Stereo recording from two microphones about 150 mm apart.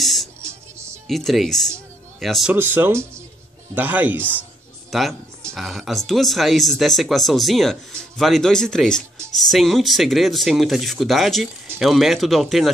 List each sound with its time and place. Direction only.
0.0 s music: centre (ahead or behind)
0.4 s music: 20° right (ahead or behind)
1.0 s speech: centre (ahead or behind)
2.5 s speech: 15° right (ahead or behind)
4.9 s speech: centre (ahead or behind)